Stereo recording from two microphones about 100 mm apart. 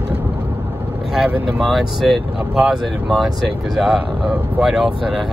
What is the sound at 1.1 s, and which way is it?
Speech, 5° right (ahead or behind).